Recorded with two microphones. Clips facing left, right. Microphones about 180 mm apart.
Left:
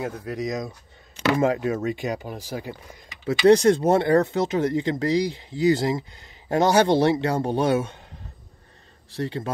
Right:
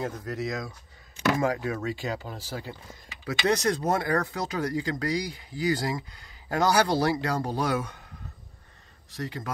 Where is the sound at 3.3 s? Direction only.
30° left (ahead or behind).